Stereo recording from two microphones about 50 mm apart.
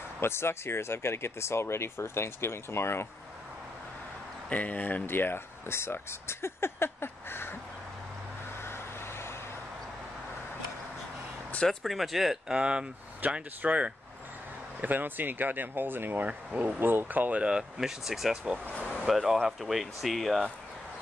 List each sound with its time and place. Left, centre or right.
0.2 s speech: left
4.5 s speech: left
8.6 s vehicle: left
11.6 s speech: centre
12.5 s speech: right
13.2 s speech: right
14.8 s speech: right
16.3 s speech: right
17.7 s speech: centre
18.3 s speech: centre
19.0 s speech: centre